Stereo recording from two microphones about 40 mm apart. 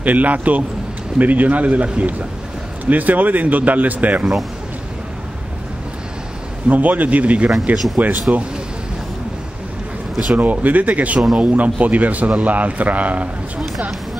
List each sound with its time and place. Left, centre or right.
0.0 s speech: right
6.7 s speech: right
7.7 s speech: centre
8.0 s speech: right
10.3 s speech: right